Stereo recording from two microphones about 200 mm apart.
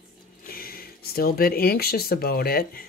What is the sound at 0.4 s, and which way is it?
Speech, 45° left (ahead or behind).